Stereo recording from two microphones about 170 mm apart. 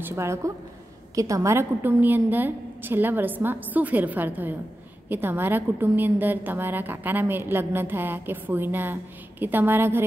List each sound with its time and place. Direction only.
0.0 s a woman's voice: 15° right (ahead or behind)